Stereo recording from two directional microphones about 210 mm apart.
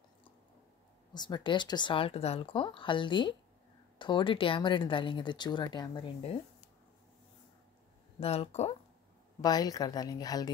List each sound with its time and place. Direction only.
1.1 s speech: 20° left (ahead or behind)
8.2 s speech: 30° left (ahead or behind)
9.4 s a woman's voice: 20° left (ahead or behind)